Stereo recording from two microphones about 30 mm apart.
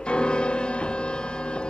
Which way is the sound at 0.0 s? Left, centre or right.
Left.